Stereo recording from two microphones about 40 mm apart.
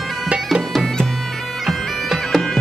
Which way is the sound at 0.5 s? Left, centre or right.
Centre.